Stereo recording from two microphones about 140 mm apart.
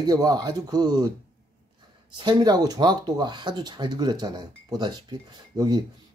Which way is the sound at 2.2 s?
30° right (ahead or behind).